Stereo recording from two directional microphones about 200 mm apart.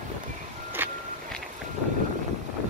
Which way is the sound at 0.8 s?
10° right (ahead or behind).